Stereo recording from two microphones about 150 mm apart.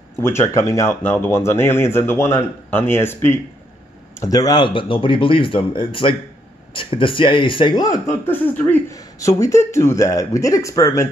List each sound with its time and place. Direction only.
0.2 s speech: 15° left (ahead or behind)
4.2 s speech: 25° left (ahead or behind)